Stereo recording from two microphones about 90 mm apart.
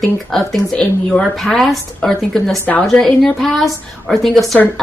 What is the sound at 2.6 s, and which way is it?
Speech, 20° left (ahead or behind).